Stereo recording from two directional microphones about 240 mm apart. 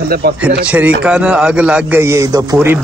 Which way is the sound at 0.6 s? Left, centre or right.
Centre.